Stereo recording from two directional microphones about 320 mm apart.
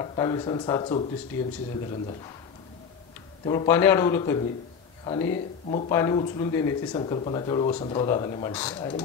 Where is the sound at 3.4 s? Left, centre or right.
Centre.